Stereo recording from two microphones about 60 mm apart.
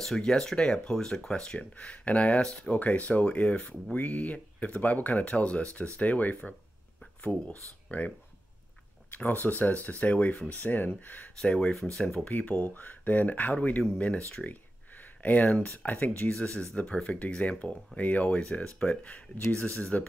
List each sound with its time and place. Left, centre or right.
0.0 s speech: centre
2.4 s speech: centre
2.8 s speech: left
7.9 s speech: left
9.1 s speech: left
11.4 s speech: centre
12.3 s speech: left
16.3 s speech: centre
18.4 s speech: centre
18.8 s speech: left